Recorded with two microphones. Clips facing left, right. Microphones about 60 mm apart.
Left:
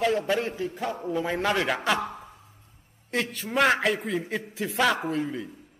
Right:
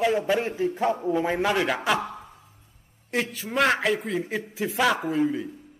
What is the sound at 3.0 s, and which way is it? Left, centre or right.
A man's voice, centre.